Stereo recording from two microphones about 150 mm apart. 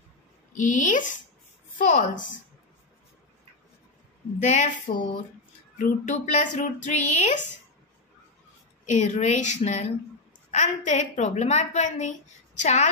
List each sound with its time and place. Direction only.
0.6 s speech: 55° left (ahead or behind)
4.4 s a woman's voice: 55° left (ahead or behind)
8.8 s a woman's voice: 50° left (ahead or behind)